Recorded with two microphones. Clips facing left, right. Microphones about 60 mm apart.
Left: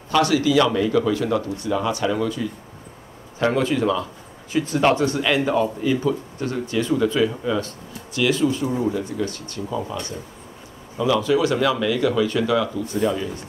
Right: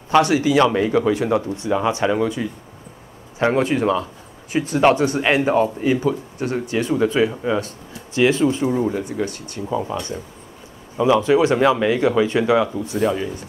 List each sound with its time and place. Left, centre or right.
0.1 s a man's voice: right
11.0 s speech: right